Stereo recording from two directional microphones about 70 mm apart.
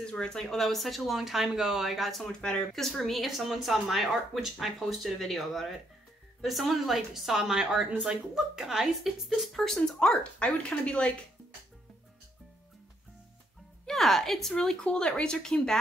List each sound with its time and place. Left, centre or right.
0.0 s speech: centre
9.8 s speech: centre
13.8 s speech: centre